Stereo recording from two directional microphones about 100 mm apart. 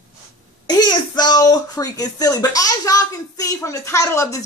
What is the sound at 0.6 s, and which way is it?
Speech, 45° left (ahead or behind).